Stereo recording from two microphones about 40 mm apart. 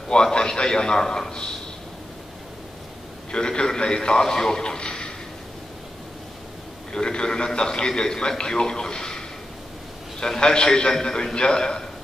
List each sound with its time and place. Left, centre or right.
0.1 s a man's voice: left
3.3 s a man's voice: left
6.9 s a man's voice: left
10.2 s a man's voice: centre